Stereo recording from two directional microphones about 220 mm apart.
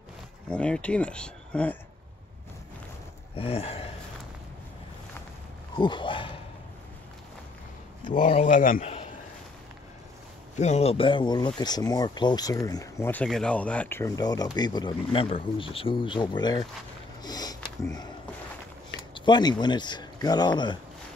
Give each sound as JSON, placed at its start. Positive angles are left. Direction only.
{"t": 0.5, "sound": "speech", "side_deg": 5}
{"t": 3.3, "sound": "a sound", "side_deg": 25}
{"t": 5.8, "sound": "speech", "side_deg": 20}
{"t": 8.1, "sound": "a man's voice", "side_deg": 30}
{"t": 10.5, "sound": "speech", "side_deg": 30}
{"t": 17.2, "sound": "sniff", "side_deg": 15}
{"t": 19.1, "sound": "speech", "side_deg": 20}